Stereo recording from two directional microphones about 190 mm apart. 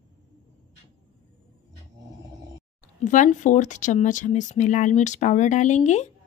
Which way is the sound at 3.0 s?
40° left (ahead or behind).